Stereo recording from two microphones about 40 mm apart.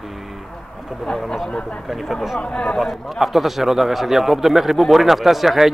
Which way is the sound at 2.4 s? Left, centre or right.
Left.